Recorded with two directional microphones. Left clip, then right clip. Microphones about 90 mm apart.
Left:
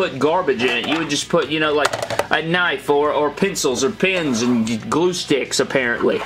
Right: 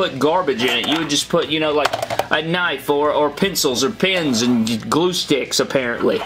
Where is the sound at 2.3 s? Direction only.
10° right (ahead or behind).